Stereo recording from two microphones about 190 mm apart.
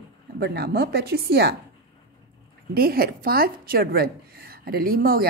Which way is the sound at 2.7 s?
55° right (ahead or behind).